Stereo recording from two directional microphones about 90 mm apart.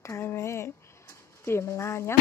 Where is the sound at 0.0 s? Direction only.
30° left (ahead or behind).